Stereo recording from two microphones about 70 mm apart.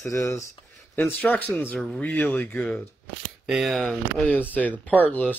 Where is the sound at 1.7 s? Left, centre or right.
Centre.